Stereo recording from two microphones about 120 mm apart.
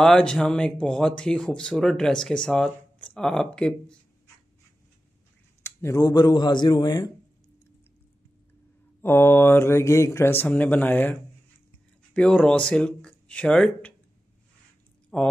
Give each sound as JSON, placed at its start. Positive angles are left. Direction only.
{"t": 0.0, "sound": "speech", "side_deg": 5}
{"t": 5.6, "sound": "speech", "side_deg": 25}
{"t": 9.0, "sound": "speech", "side_deg": 20}
{"t": 15.1, "sound": "speech", "side_deg": 10}